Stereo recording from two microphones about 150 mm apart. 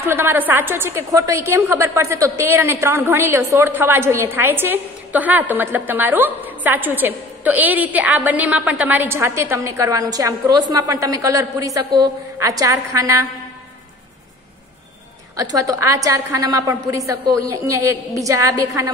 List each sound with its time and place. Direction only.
0.0 s a woman's voice: 15° right (ahead or behind)
15.3 s a woman's voice: 25° right (ahead or behind)